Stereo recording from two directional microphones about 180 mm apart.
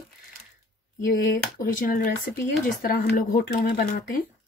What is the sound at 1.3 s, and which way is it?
Speech, 55° left (ahead or behind).